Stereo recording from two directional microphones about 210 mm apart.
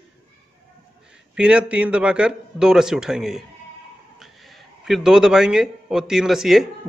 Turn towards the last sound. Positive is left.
turn(degrees=0)  # may be behind; listen again after turning